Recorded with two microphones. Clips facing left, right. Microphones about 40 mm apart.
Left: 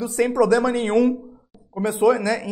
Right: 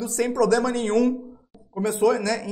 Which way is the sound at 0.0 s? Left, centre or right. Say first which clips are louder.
Left 3 dB; centre.